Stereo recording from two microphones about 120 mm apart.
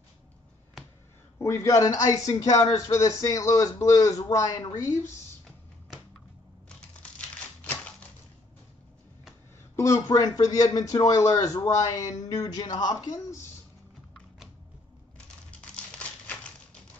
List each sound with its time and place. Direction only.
1.4 s a man's voice: 25° left (ahead or behind)
7.0 s crumpling: 15° left (ahead or behind)
9.8 s a man's voice: 25° left (ahead or behind)
15.6 s a sound: 10° left (ahead or behind)